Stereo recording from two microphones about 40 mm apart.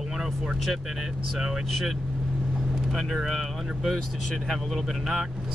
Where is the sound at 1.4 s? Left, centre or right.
Centre.